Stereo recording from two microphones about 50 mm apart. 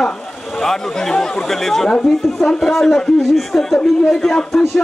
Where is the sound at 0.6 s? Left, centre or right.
Centre.